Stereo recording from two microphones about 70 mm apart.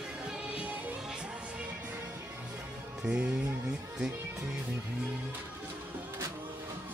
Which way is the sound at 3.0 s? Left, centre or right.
Centre.